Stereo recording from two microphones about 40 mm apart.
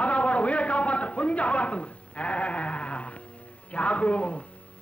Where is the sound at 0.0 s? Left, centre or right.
Left.